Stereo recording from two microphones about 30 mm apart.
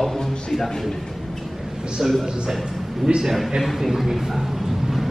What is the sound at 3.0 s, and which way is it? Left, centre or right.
Speech, right.